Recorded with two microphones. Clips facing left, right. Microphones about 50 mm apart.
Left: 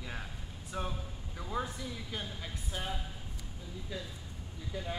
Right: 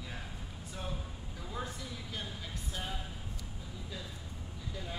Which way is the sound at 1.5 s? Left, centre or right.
Centre.